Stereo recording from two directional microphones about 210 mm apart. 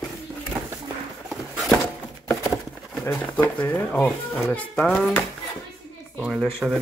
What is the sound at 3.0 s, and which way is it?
Speech, 15° left (ahead or behind).